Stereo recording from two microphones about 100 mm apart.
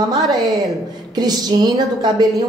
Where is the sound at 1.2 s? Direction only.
40° right (ahead or behind).